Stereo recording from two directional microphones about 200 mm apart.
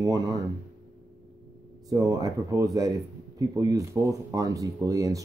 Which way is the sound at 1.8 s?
15° right (ahead or behind).